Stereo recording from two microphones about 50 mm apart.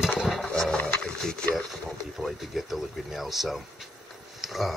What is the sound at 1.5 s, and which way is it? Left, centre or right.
Speech, centre.